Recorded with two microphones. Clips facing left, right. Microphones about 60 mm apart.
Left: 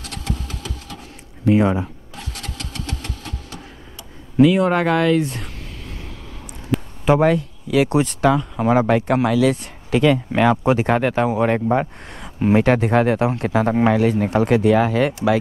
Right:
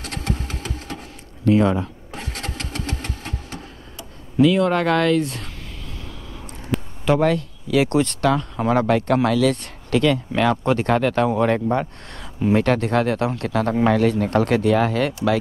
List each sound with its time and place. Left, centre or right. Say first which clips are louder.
0.0 s engine: right 2 dB; right
1.4 s speech: left 1 dB; centre
2.1 s vehicle: right 3 dB; right
4.4 s speech: left 2 dB; centre
6.7 s a sound: left 3 dB; centre
7.1 s speech: left 3 dB; centre
7.3 s speech: left 1 dB; centre